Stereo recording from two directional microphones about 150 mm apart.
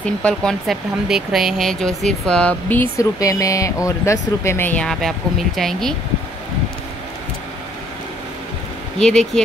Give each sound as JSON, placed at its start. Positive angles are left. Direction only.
{"t": 0.0, "sound": "speech", "side_deg": 5}
{"t": 8.9, "sound": "speech", "side_deg": 5}